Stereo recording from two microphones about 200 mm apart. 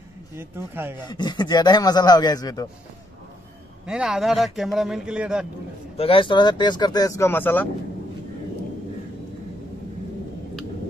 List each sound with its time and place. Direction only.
0.4 s speech: 10° right (ahead or behind)
1.0 s speech: 20° left (ahead or behind)
3.8 s a man's voice: 5° right (ahead or behind)
5.9 s speech: 25° left (ahead or behind); by 7.6 s 10° left (ahead or behind)